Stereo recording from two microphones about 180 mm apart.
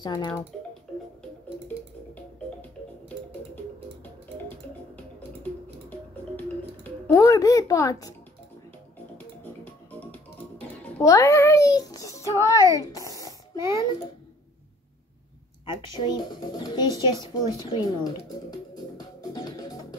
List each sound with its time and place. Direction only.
0.0 s speech: 25° left (ahead or behind)
0.5 s music: centre (ahead or behind)
4.5 s music: 10° left (ahead or behind)
9.4 s music: 10° left (ahead or behind)
11.0 s a child's voice: 15° left (ahead or behind)
12.7 s a sound: 20° left (ahead or behind)
16.0 s speech: 25° left (ahead or behind)
18.9 s music: 20° left (ahead or behind)